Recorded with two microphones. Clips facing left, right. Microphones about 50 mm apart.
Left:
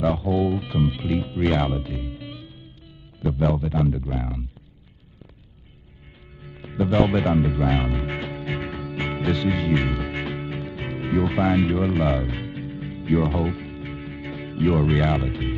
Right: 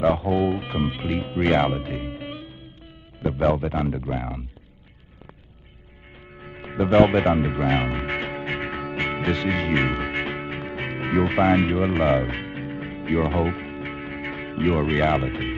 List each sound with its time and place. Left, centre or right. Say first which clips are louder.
0.0 s speech: right 3 dB; right
0.3 s speech: even; right
6.4 s music: right 1 dB; right